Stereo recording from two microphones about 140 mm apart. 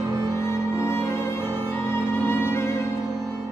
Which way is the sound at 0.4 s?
20° left (ahead or behind).